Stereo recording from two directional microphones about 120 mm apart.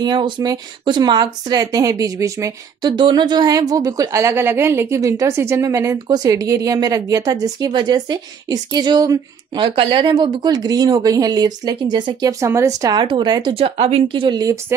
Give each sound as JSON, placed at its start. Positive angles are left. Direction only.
{"t": 0.0, "sound": "speech", "side_deg": -40}
{"t": 3.0, "sound": "speech", "side_deg": -40}
{"t": 9.6, "sound": "speech", "side_deg": -45}
{"t": 13.0, "sound": "speech", "side_deg": -40}